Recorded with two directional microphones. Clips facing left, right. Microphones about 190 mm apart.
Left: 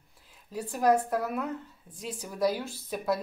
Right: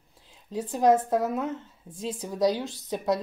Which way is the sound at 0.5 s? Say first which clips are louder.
Right 3 dB; 20° right (ahead or behind).